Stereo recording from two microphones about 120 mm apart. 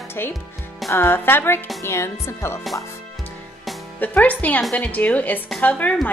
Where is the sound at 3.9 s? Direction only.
15° left (ahead or behind).